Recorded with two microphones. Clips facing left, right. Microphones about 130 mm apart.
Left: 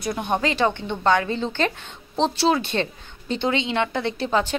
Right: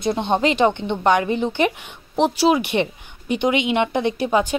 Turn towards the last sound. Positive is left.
turn(degrees=-15)  # may be behind; listen again after turning